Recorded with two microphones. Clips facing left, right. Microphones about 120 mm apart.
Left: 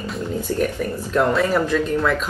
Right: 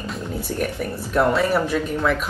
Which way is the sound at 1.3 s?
10° right (ahead or behind).